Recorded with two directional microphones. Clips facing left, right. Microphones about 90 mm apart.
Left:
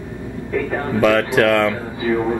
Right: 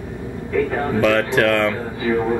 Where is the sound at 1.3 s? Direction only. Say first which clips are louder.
Left 2 dB; 15° left (ahead or behind).